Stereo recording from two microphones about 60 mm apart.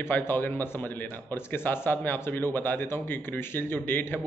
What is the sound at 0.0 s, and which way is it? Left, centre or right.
A man's voice, left.